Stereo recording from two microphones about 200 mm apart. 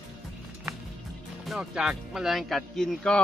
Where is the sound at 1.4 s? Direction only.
Centre (ahead or behind).